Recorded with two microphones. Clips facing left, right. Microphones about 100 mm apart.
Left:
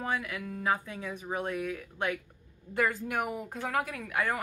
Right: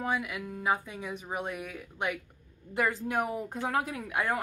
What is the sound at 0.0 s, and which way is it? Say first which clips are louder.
A woman's voice: right 1 dB; 15° right (ahead or behind).